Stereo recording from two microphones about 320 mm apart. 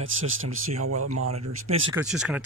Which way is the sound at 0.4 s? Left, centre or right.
Right.